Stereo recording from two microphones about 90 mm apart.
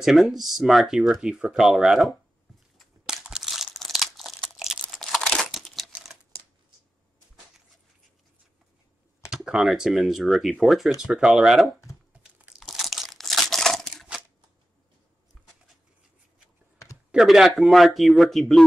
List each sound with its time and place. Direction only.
0.0 s speech: centre (ahead or behind)
2.8 s crumpling: 5° right (ahead or behind)
4.6 s crunch: 5° right (ahead or behind)
4.9 s crumpling: centre (ahead or behind)
9.3 s speech: 10° right (ahead or behind)
12.1 s crunch: 15° right (ahead or behind)
12.5 s crunch: centre (ahead or behind)
16.7 s computer keyboard: 30° left (ahead or behind)
17.1 s speech: 5° right (ahead or behind)